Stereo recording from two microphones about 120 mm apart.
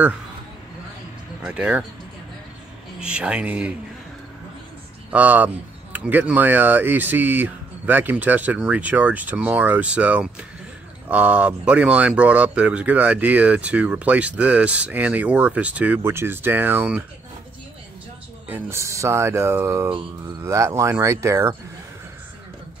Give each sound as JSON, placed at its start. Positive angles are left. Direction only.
{"t": 1.4, "sound": "speech", "side_deg": -10}
{"t": 3.0, "sound": "speech", "side_deg": -10}
{"t": 5.1, "sound": "speech", "side_deg": -15}
{"t": 18.5, "sound": "speech", "side_deg": -20}